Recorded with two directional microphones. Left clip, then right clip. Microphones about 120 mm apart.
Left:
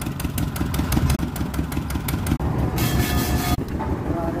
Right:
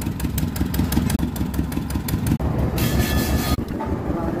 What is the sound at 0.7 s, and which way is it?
Vehicle, 15° left (ahead or behind).